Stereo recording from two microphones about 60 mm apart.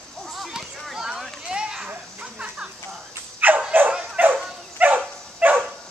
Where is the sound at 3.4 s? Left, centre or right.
Right.